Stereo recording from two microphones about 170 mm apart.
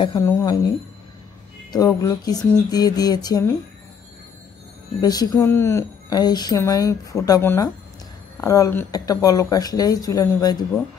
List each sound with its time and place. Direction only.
0.2 s speech: 15° left (ahead or behind)
1.7 s a woman's voice: 20° left (ahead or behind)
5.0 s a woman's voice: 20° left (ahead or behind)